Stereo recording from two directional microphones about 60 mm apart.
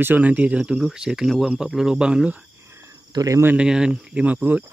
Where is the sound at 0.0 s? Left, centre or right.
Right.